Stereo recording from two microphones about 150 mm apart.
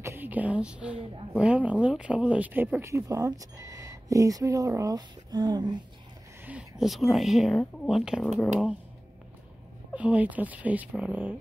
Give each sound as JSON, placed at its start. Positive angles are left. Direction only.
{"t": 0.0, "sound": "a woman's voice", "side_deg": -15}
{"t": 6.4, "sound": "speech", "side_deg": -5}
{"t": 9.9, "sound": "a woman's voice", "side_deg": -10}